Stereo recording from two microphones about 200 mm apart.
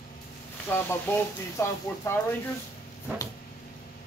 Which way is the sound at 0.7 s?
10° left (ahead or behind).